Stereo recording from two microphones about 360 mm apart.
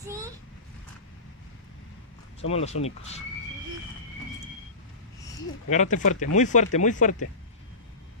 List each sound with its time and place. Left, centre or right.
0.0 s a sound: centre
2.4 s speech: centre
5.7 s speech: centre